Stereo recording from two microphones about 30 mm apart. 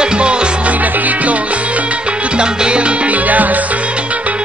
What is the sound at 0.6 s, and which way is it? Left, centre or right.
Music, right.